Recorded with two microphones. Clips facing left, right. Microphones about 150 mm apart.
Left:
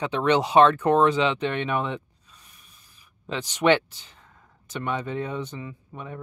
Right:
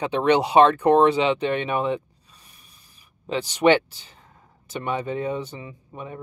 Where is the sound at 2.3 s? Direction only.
35° right (ahead or behind).